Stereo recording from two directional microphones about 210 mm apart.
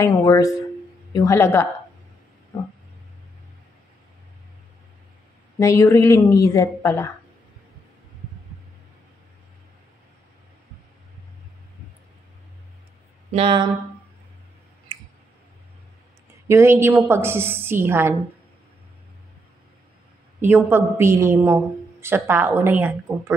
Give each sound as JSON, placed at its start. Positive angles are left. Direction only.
{"t": 0.0, "sound": "speech", "side_deg": 15}
{"t": 5.6, "sound": "speech", "side_deg": 15}
{"t": 13.3, "sound": "speech", "side_deg": -25}
{"t": 16.4, "sound": "a woman's voice", "side_deg": -10}
{"t": 20.3, "sound": "a woman's voice", "side_deg": -10}